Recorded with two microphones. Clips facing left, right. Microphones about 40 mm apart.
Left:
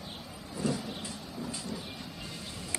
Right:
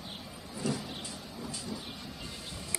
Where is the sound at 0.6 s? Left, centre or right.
Centre.